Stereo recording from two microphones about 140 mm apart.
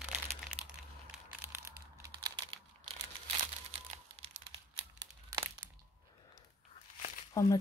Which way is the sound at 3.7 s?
45° right (ahead or behind).